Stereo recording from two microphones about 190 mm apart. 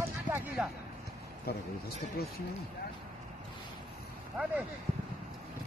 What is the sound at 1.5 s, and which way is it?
Speech, 55° left (ahead or behind).